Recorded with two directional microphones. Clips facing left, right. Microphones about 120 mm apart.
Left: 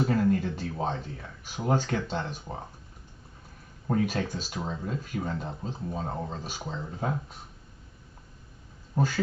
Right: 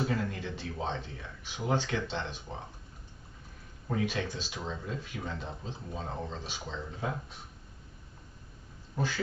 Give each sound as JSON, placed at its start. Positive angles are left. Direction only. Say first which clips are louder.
{"t": 0.0, "sound": "speech", "louder": "left 8 dB", "side_deg": 45}
{"t": 3.8, "sound": "speech", "louder": "left 5 dB", "side_deg": 45}
{"t": 8.9, "sound": "speech", "louder": "left 6 dB", "side_deg": 45}